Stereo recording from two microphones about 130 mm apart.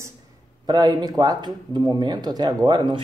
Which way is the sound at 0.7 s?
30° right (ahead or behind).